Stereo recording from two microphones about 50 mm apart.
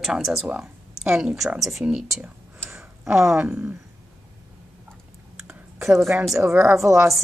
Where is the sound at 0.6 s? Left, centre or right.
Centre.